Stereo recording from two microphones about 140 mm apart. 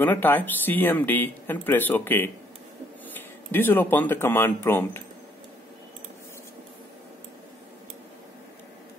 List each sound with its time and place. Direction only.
0.0 s speech: 15° left (ahead or behind)